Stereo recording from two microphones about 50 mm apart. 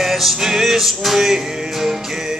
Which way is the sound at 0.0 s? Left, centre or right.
Centre.